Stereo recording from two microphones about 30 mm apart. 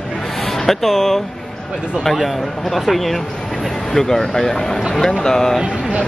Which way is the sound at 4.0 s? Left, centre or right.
Centre.